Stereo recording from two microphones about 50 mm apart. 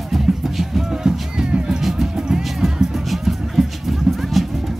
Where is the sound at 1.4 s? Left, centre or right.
Centre.